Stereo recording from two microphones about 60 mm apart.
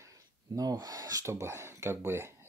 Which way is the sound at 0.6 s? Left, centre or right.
Right.